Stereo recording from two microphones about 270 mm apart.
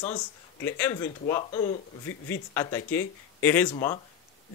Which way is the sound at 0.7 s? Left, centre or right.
Centre.